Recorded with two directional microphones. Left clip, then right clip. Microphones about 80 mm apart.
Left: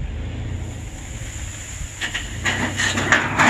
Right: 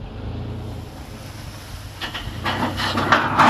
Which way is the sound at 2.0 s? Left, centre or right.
Left.